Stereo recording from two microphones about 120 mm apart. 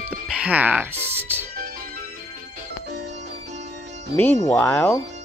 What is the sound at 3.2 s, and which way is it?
Music, 70° right (ahead or behind).